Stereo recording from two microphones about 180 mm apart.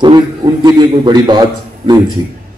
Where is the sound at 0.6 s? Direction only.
25° right (ahead or behind).